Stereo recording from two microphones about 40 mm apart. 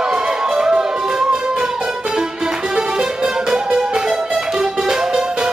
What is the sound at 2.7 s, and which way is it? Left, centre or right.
Music, right.